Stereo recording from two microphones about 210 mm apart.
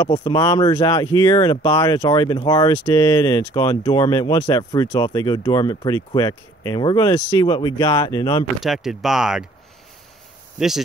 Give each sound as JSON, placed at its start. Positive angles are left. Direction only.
{"t": 0.0, "sound": "speech", "side_deg": 20}
{"t": 8.5, "sound": "speech", "side_deg": 0}